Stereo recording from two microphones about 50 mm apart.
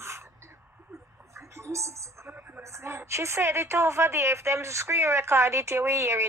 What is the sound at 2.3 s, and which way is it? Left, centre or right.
Music, right.